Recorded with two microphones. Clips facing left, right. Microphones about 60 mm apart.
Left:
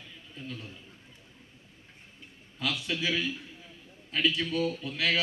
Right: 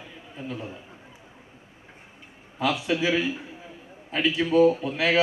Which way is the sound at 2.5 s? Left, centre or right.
Centre.